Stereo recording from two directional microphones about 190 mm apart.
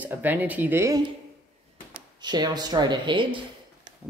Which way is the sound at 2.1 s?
20° right (ahead or behind).